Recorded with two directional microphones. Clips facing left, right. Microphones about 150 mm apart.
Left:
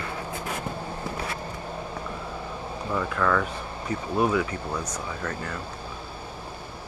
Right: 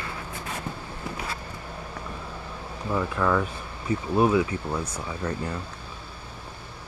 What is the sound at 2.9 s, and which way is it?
Speech, 20° right (ahead or behind).